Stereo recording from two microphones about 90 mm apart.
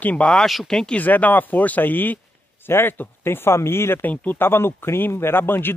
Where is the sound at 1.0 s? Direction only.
20° left (ahead or behind).